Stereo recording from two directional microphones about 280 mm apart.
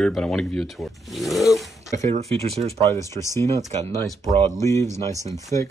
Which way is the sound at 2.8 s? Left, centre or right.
Centre.